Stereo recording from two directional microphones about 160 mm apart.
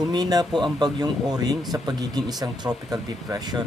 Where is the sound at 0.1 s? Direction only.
25° right (ahead or behind).